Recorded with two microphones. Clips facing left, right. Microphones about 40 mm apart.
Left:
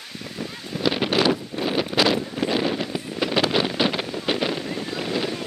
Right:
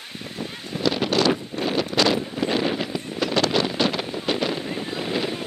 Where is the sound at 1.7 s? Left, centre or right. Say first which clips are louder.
Even; centre.